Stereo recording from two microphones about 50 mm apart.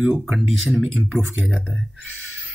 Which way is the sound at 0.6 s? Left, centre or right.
Centre.